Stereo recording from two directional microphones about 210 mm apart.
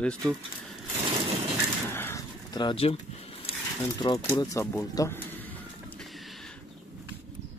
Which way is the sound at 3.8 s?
20° left (ahead or behind).